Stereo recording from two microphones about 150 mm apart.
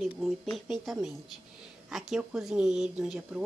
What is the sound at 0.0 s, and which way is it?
A woman's voice, centre (ahead or behind).